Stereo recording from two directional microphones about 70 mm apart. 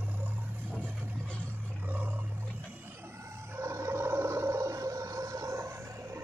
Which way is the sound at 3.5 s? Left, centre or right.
Right.